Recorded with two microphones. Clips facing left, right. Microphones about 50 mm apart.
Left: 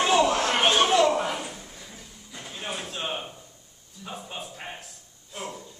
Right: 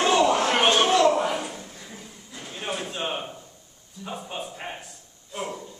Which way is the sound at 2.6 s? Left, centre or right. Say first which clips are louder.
Right 3 dB; centre.